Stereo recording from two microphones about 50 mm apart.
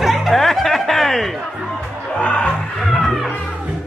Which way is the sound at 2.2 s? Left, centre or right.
Left.